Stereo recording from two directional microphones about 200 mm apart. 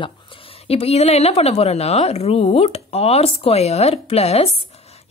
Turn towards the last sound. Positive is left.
turn(degrees=30)  # may be behind; listen again after turning